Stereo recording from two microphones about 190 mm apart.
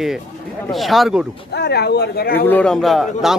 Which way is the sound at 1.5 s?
60° left (ahead or behind).